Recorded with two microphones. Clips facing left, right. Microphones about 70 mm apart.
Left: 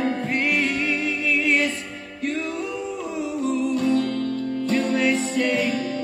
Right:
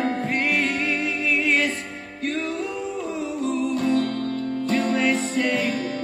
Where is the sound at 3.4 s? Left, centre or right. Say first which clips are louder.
Left 1 dB; right.